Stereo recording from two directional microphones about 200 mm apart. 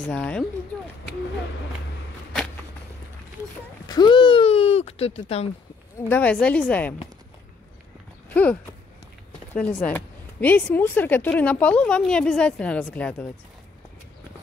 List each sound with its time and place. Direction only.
0.1 s speech: 5° left (ahead or behind)
3.8 s speech: 20° left (ahead or behind)
6.0 s speech: 10° left (ahead or behind)
8.3 s a sound: 10° left (ahead or behind)
9.5 s speech: 5° left (ahead or behind)